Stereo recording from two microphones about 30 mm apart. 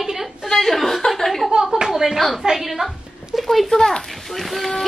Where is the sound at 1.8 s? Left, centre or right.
Centre.